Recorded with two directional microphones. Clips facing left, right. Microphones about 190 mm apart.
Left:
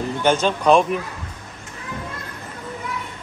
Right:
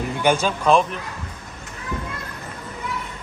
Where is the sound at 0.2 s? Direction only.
10° right (ahead or behind).